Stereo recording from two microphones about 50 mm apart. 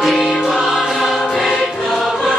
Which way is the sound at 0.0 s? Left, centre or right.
Centre.